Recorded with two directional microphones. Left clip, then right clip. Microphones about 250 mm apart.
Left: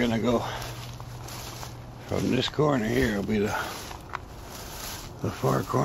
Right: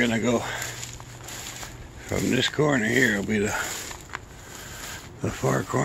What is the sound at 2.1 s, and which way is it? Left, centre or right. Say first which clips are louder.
Speech: right 3 dB; centre.